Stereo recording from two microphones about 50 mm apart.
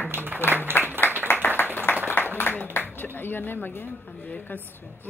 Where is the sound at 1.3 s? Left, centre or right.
Left.